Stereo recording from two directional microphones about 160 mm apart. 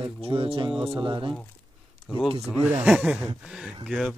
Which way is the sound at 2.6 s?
5° right (ahead or behind).